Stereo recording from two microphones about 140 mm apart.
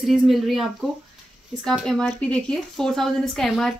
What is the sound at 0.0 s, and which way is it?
Speech, centre (ahead or behind).